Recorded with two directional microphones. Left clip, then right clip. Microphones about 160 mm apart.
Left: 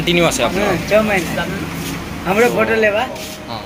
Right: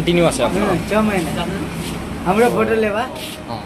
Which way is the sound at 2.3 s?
85° right.